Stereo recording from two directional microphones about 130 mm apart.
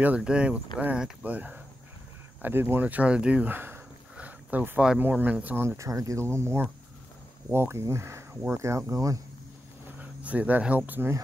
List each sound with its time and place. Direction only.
0.0 s speech: 10° right (ahead or behind); by 9.2 s 25° right (ahead or behind)
9.9 s cricket: 10° right (ahead or behind)
10.9 s speech: 15° right (ahead or behind)